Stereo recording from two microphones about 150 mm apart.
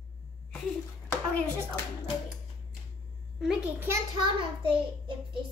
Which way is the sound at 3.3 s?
5° right (ahead or behind).